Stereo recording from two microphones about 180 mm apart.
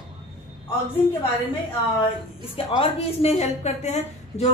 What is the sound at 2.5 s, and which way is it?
A woman's voice, 35° left (ahead or behind).